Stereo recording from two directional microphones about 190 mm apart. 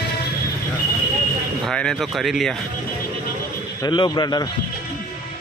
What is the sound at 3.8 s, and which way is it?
Speech, 25° left (ahead or behind).